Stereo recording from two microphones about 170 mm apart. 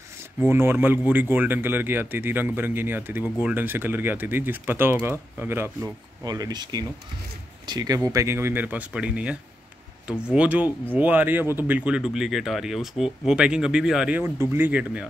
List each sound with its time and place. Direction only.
0.4 s speech: 15° right (ahead or behind)